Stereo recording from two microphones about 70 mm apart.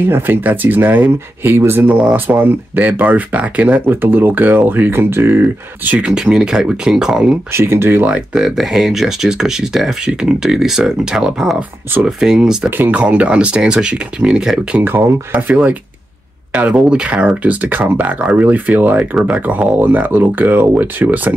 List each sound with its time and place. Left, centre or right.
0.0 s speech: right
3.9 s speech: right
5.9 s speech: centre
7.5 s speech: right
8.1 s speech: centre
12.6 s speech: right
13.0 s speech: centre
14.8 s speech: right
16.5 s speech: centre